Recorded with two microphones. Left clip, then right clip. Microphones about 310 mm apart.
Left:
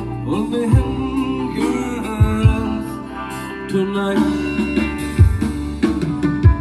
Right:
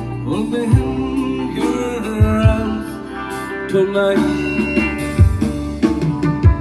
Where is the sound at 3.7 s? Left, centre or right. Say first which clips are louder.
Right 5 dB; centre.